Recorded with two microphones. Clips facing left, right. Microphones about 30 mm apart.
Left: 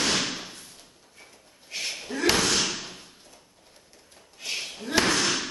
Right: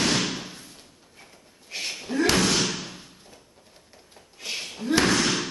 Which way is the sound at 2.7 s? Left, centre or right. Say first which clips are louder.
Right 2 dB; right.